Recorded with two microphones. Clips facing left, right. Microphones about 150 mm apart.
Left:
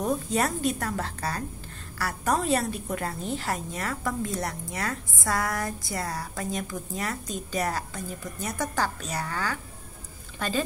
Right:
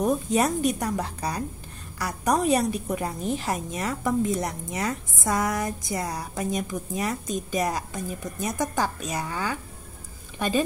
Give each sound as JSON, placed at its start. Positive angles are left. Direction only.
{"t": 0.0, "sound": "a woman's voice", "side_deg": -20}